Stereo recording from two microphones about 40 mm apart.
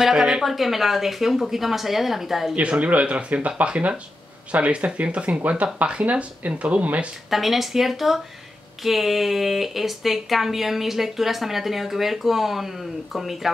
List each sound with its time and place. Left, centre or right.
0.0 s speech: centre
0.4 s a woman's voice: centre
2.8 s speech: right
7.2 s a woman's voice: centre